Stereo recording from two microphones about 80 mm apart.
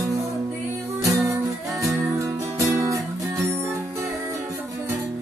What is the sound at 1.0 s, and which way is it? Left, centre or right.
Music, right.